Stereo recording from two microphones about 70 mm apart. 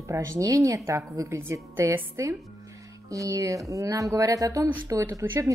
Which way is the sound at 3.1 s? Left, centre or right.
Right.